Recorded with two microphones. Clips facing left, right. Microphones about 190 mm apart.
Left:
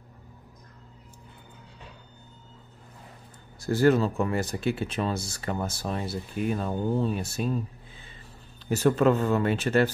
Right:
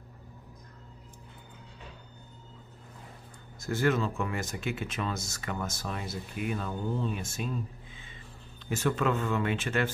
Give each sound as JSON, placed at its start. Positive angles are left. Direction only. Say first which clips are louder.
{"t": 3.5, "sound": "speech", "louder": "left 6 dB", "side_deg": 35}
{"t": 8.6, "sound": "speech", "louder": "left 7 dB", "side_deg": 40}